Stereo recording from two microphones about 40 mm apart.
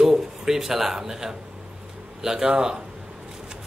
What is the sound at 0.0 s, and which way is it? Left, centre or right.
A man's voice, centre.